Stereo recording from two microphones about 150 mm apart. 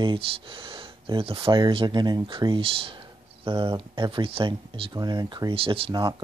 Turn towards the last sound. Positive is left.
turn(degrees=-30)  # may be behind; listen again after turning